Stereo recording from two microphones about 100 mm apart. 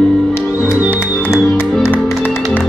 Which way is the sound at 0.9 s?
20° left (ahead or behind).